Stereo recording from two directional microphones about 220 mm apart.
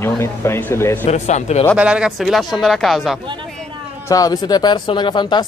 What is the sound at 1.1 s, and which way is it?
Speech, 30° left (ahead or behind).